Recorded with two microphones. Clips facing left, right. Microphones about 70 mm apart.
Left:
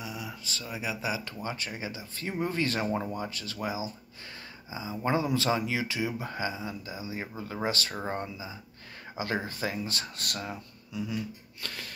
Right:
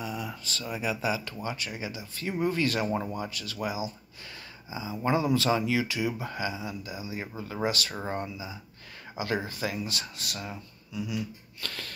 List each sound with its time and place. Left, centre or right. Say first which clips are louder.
0.0 s speech: right 4 dB; centre
1.2 s speech: right 1 dB; left
11.6 s speech: right 1 dB; centre